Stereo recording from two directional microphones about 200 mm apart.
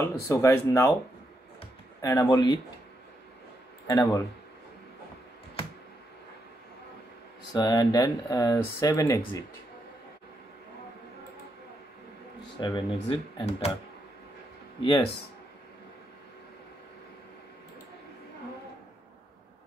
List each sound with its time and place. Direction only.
0.0 s speech: 10° left (ahead or behind)
2.0 s speech: 15° left (ahead or behind)
3.8 s speech: 15° left (ahead or behind)
7.5 s speech: 20° left (ahead or behind)
12.5 s speech: 20° left (ahead or behind)
12.9 s speech: 30° left (ahead or behind)
14.8 s speech: 25° left (ahead or behind)